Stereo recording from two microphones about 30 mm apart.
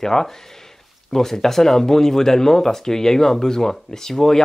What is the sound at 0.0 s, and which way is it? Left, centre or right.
Speech, centre.